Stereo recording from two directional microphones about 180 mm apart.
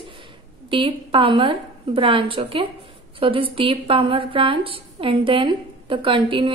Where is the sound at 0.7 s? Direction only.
30° right (ahead or behind).